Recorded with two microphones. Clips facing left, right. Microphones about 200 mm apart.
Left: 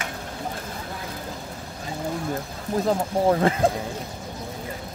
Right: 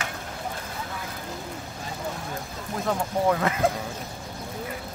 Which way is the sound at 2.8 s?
30° left (ahead or behind).